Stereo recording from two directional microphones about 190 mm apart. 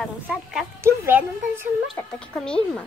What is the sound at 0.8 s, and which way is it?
Speech, 10° right (ahead or behind).